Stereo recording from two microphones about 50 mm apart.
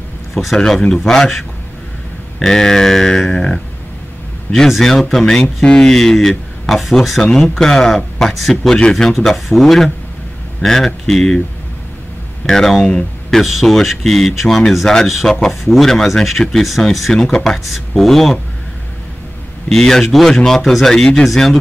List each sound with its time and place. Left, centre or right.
0.3 s speech: centre
0.6 s speech: centre
4.6 s speech: centre
8.6 s speech: centre
8.9 s speech: centre
12.4 s speech: centre
19.7 s speech: centre